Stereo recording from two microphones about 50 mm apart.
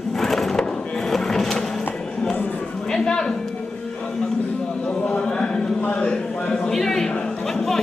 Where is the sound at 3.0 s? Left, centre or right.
Centre.